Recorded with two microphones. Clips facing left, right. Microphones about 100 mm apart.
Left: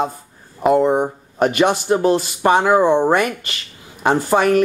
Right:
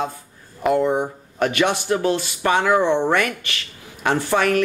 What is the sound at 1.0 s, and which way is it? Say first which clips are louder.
Speech: left 4 dB; 40° left (ahead or behind).